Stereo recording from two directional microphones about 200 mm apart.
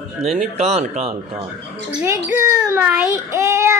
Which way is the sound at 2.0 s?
10° right (ahead or behind).